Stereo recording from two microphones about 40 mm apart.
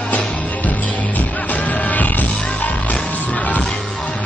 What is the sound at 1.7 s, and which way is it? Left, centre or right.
Music, left.